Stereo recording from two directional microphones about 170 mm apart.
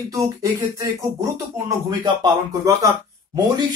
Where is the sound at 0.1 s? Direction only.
20° right (ahead or behind).